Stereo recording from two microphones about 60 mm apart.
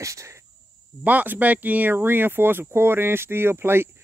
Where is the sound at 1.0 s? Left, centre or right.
Right.